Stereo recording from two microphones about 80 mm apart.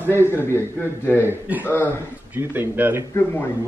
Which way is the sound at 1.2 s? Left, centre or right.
Right.